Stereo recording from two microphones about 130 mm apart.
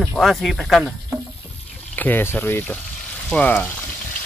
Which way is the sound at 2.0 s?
15° left (ahead or behind).